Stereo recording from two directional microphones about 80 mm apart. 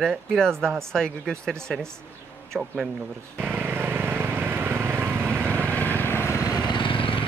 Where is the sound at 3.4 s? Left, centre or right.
Right.